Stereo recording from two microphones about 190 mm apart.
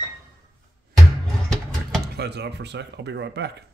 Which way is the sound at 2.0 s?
60° right (ahead or behind).